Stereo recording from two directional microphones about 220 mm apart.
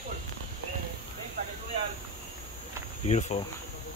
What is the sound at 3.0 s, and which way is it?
Speech, 30° left (ahead or behind).